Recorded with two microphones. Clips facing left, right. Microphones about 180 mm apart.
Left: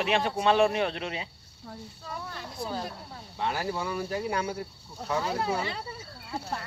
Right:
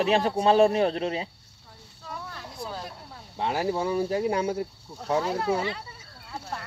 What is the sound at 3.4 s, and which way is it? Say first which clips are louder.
Speech: right 4 dB; 25° right (ahead or behind).